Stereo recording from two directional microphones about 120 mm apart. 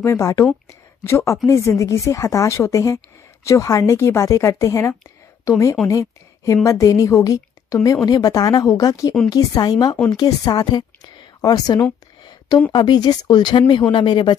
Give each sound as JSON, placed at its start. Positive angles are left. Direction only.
{"t": 0.0, "sound": "a woman's voice", "side_deg": 25}